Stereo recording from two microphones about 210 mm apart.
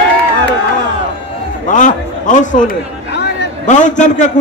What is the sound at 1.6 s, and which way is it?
A man's voice, 35° left (ahead or behind).